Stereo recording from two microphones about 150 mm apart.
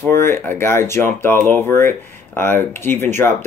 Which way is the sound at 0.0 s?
15° left (ahead or behind).